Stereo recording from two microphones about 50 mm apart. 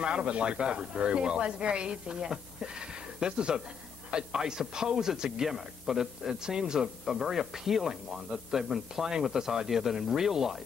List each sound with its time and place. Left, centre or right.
0.0 s a man's voice: centre